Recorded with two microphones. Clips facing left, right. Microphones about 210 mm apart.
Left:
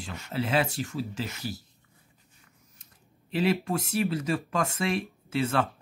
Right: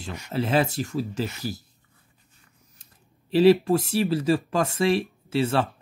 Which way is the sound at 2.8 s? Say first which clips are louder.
Even; 35° right (ahead or behind).